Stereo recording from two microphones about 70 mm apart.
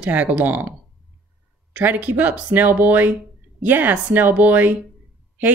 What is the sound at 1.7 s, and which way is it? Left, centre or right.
Speech, right.